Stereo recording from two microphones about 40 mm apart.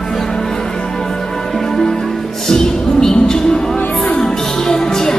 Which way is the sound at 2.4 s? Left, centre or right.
Centre.